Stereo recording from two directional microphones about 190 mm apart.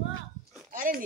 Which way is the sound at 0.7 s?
45° right (ahead or behind).